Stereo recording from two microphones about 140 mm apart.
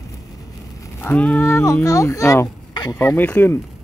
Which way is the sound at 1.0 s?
10° left (ahead or behind).